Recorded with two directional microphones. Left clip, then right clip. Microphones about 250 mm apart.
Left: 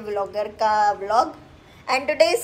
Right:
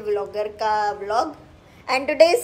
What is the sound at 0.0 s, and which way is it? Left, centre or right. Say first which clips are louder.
A woman's voice: right 1 dB; centre.